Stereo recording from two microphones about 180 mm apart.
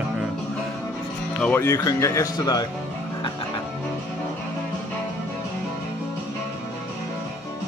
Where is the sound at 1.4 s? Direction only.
10° left (ahead or behind).